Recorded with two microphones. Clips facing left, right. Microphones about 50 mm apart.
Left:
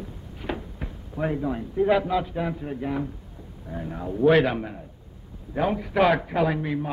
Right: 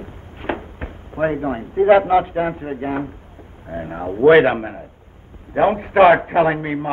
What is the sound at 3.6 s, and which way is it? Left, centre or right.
A man's voice, right.